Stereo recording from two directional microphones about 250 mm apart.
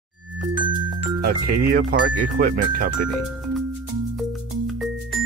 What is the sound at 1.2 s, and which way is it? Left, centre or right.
Speech, right.